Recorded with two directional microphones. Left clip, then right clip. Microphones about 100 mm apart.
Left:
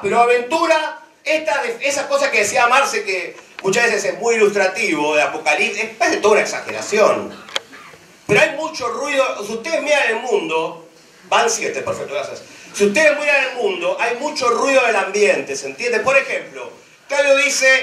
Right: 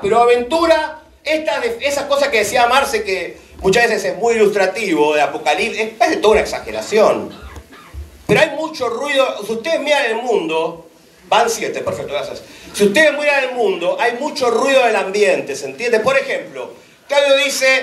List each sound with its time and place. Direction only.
0.1 s a man's voice: 45° left (ahead or behind)
8.3 s a man's voice: 40° left (ahead or behind)